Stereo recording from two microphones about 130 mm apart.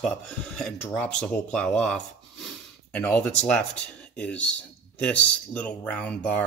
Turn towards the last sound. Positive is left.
turn(degrees=10)  # may be behind; listen again after turning